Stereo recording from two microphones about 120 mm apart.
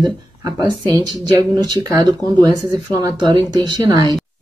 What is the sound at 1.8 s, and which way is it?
A woman's voice, 30° right (ahead or behind).